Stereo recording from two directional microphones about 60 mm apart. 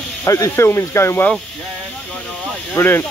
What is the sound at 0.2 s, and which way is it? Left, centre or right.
Speech, left.